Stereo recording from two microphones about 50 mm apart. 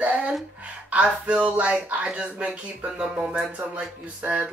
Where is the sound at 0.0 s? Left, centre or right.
Right.